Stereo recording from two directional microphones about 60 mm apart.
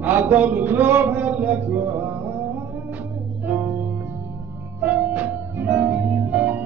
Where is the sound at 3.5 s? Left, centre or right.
Right.